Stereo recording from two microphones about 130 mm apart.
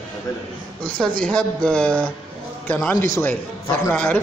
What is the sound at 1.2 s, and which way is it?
Speech, 5° left (ahead or behind).